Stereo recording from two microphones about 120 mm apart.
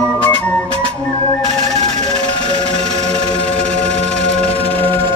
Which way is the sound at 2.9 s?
65° right (ahead or behind).